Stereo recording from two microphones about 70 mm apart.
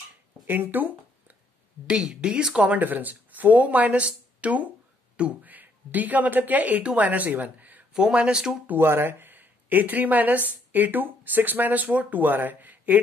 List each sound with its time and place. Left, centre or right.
0.5 s speech: right
1.9 s speech: centre
7.9 s speech: centre
8.6 s speech: right